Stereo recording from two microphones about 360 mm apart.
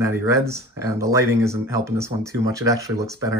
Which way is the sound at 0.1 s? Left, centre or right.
Centre.